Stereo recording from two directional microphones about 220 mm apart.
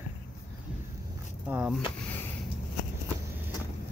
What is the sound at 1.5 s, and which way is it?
Speech, 5° right (ahead or behind).